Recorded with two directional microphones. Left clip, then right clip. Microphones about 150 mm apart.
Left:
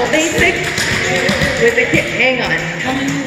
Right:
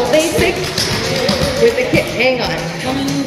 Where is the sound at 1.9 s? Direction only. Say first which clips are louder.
Left 1 dB; 40° right (ahead or behind).